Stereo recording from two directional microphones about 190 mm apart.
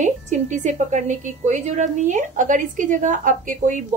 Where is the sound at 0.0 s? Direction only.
40° right (ahead or behind).